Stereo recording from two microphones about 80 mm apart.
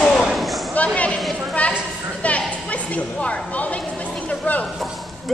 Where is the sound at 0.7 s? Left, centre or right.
Centre.